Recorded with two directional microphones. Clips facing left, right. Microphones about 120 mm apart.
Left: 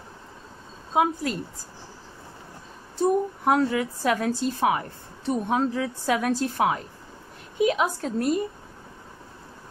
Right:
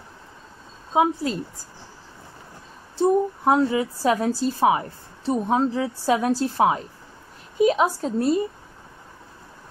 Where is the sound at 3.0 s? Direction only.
25° right (ahead or behind).